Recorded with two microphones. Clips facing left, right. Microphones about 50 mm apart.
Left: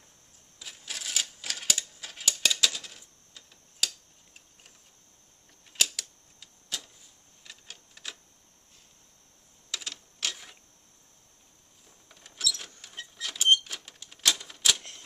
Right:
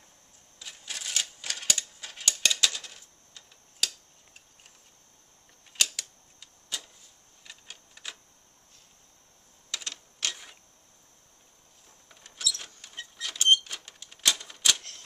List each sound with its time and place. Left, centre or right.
0.6 s typewriter: centre
5.9 s a sound: centre
7.4 s printer: centre
9.7 s typewriter: centre
12.1 s a sound: centre
14.8 s typewriter: left